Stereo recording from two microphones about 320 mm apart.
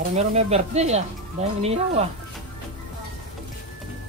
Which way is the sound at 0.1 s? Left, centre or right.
Centre.